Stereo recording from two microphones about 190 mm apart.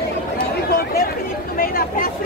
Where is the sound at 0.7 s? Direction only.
55° left (ahead or behind).